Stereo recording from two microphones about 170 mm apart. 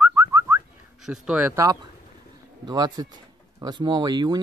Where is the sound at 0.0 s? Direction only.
20° right (ahead or behind).